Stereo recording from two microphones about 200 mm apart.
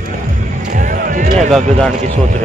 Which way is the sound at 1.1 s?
40° right (ahead or behind).